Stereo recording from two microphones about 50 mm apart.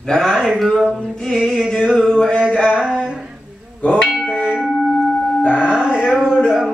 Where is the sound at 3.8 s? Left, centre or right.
Left.